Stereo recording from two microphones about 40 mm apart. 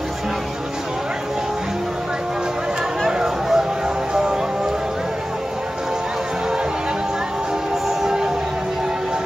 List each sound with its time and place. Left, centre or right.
3.1 s a sound: centre
4.1 s music: centre
8.0 s music: centre